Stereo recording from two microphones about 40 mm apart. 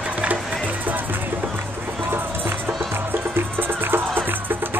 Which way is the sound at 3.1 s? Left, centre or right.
Right.